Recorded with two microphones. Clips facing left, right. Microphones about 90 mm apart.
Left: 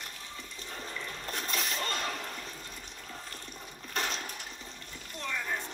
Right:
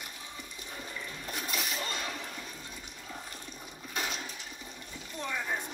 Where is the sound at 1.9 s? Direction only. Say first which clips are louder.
Left 3 dB; 50° left (ahead or behind).